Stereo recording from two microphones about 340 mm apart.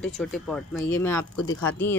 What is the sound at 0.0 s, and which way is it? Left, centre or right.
Speech, centre.